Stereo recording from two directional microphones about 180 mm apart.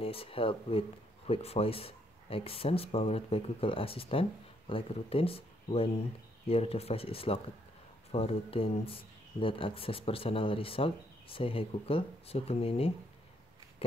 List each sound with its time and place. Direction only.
0.0 s speech: 30° left (ahead or behind)